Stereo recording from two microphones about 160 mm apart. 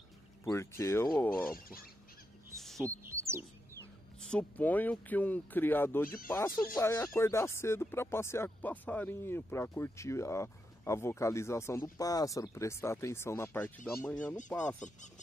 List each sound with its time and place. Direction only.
0.5 s speech: 20° left (ahead or behind)
1.5 s speech: 65° left (ahead or behind)
2.5 s music: centre (ahead or behind)
3.1 s bird: 15° right (ahead or behind)
4.2 s speech: 5° left (ahead or behind)